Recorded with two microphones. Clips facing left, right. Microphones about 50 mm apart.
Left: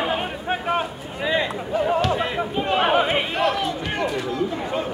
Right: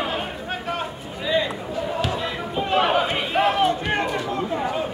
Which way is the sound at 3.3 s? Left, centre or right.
Centre.